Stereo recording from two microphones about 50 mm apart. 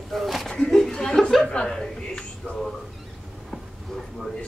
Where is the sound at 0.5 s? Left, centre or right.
Centre.